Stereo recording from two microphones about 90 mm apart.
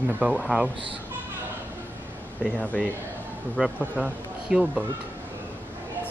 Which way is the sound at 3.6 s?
20° right (ahead or behind).